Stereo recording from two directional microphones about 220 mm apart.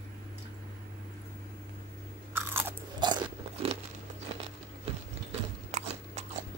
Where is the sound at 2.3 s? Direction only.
10° right (ahead or behind).